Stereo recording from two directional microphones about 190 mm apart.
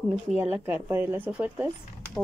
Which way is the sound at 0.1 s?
5° right (ahead or behind).